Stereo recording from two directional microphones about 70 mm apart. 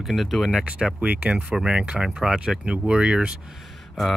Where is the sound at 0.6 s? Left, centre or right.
Centre.